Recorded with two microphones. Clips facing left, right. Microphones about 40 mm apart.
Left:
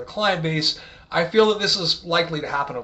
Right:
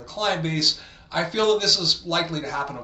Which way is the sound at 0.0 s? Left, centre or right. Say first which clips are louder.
Left 3 dB; centre.